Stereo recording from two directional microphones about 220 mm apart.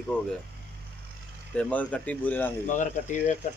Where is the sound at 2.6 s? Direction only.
35° left (ahead or behind).